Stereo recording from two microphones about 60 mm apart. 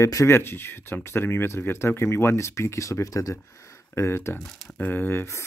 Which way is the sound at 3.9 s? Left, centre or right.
Left.